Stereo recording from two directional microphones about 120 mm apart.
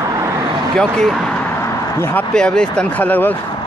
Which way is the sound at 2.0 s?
20° left (ahead or behind).